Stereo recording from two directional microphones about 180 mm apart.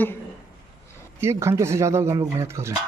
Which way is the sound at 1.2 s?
15° right (ahead or behind).